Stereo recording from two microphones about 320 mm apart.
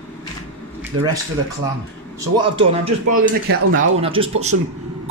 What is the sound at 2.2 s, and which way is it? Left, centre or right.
Speech, centre.